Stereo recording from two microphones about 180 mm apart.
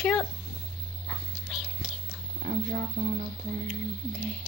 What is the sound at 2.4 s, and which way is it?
Speech, 55° right (ahead or behind).